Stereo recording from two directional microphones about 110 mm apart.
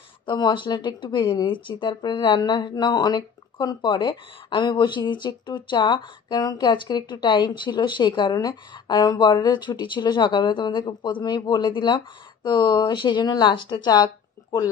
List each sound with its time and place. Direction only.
0.3 s speech: 45° left (ahead or behind)